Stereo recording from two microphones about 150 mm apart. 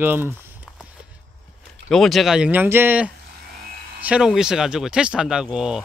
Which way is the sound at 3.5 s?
80° right.